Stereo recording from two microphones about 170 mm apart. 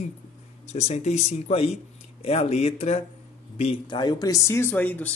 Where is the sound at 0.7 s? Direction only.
40° left (ahead or behind).